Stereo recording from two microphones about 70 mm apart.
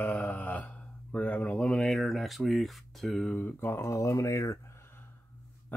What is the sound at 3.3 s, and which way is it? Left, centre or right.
Speech, left.